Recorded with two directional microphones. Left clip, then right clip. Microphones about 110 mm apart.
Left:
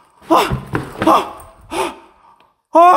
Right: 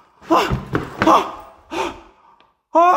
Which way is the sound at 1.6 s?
45° left (ahead or behind).